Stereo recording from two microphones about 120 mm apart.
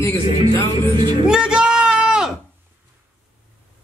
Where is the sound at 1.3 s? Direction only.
5° right (ahead or behind).